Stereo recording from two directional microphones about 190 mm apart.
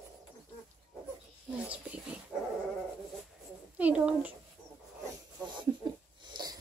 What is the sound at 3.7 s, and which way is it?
Speech, 5° right (ahead or behind).